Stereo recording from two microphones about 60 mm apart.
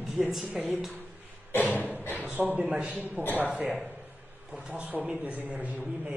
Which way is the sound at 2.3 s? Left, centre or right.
Right.